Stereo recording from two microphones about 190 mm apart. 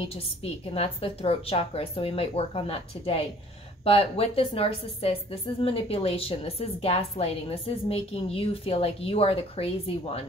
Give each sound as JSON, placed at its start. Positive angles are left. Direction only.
{"t": 0.1, "sound": "a woman's voice", "side_deg": 30}